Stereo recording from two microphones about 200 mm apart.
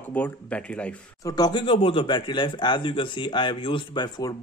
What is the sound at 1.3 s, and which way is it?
A man's voice, 20° left (ahead or behind).